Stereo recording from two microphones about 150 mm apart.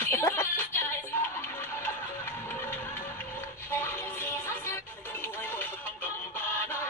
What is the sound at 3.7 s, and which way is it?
Music, 15° left (ahead or behind).